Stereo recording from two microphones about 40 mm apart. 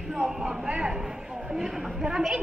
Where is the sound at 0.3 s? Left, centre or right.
Centre.